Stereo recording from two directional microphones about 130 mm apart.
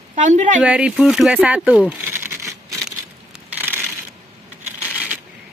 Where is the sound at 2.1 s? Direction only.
20° right (ahead or behind).